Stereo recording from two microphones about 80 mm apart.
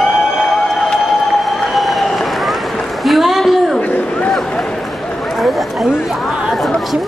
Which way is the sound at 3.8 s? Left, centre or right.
Centre.